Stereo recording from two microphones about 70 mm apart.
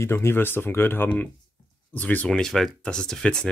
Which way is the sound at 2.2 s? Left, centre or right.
Centre.